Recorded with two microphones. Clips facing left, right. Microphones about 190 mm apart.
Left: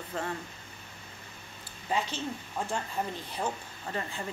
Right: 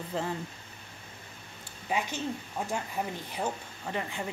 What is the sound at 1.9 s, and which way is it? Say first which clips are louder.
Speech: even; 15° right (ahead or behind).